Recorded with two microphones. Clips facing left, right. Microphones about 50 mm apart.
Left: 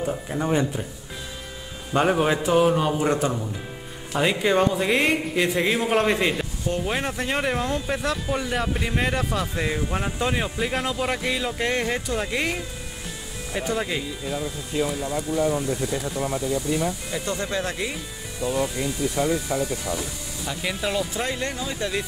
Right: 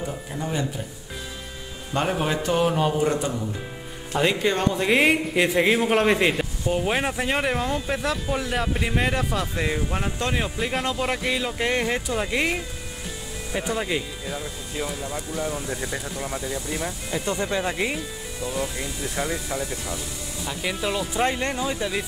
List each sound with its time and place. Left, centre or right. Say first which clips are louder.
0.4 s speech: left 5 dB; left
2.0 s speech: left 4 dB; centre
2.5 s speech: left 2 dB; centre
4.1 s speech: left 1 dB; centre
17.3 s speech: right 2 dB; centre
20.4 s speech: even; centre
21.2 s speech: right 4 dB; right
21.6 s speech: right 1 dB; centre